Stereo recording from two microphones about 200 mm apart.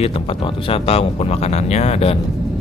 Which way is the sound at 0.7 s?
30° left (ahead or behind).